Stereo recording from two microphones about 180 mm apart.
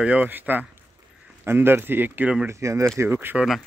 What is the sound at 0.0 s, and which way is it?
Speech, 10° right (ahead or behind).